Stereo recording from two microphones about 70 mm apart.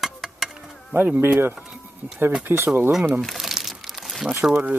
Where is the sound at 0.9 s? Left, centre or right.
Right.